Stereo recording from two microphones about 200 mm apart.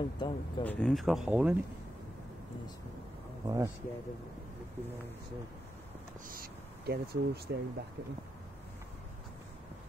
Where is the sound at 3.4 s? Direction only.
15° right (ahead or behind).